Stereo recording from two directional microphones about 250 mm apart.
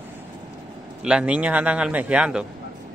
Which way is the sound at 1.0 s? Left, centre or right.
Centre.